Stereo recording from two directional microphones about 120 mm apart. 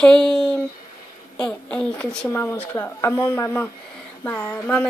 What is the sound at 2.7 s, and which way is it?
A woman's voice, 25° left (ahead or behind).